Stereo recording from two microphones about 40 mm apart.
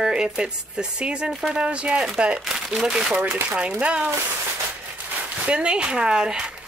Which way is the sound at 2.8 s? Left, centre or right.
Centre.